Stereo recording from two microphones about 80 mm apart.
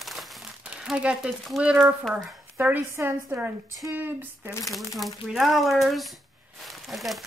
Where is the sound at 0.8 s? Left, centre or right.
Centre.